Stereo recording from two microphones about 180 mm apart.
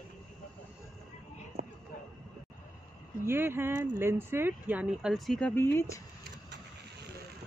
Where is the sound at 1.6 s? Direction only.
55° right (ahead or behind).